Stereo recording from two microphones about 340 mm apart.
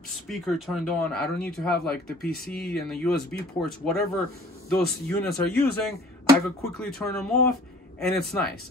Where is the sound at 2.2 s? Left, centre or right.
Left.